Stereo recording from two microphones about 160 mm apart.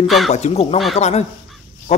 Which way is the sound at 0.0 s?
Centre (ahead or behind).